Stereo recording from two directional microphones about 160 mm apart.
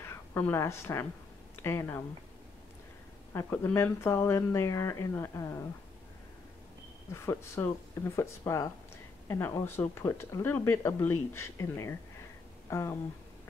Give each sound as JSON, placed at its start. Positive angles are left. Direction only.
{"t": 0.0, "sound": "a woman's voice", "side_deg": 15}
{"t": 3.3, "sound": "speech", "side_deg": 15}
{"t": 7.1, "sound": "speech", "side_deg": 15}
{"t": 12.6, "sound": "a sound", "side_deg": 15}